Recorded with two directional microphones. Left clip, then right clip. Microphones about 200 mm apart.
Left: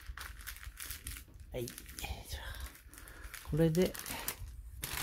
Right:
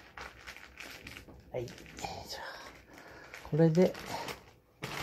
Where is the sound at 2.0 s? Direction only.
65° left (ahead or behind).